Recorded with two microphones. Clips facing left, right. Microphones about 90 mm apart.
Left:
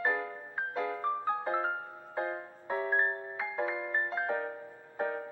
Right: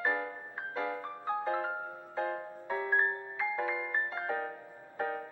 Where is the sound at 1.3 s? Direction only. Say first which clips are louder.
Right 4 dB; 25° left (ahead or behind).